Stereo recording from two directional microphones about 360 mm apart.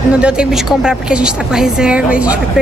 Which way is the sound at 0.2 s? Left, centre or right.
Centre.